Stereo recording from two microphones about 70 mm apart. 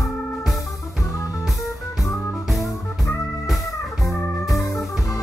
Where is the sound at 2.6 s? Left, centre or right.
Left.